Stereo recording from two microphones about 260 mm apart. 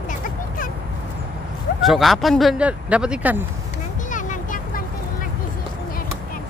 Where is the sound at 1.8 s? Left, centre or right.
Centre.